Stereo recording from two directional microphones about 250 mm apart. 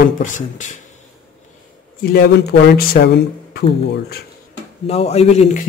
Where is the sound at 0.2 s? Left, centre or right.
Left.